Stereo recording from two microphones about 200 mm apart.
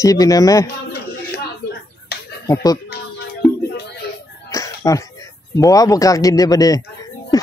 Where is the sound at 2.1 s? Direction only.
55° left (ahead or behind).